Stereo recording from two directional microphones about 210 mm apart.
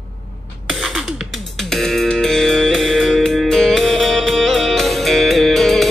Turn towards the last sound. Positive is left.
turn(degrees=0)  # may be behind; listen again after turning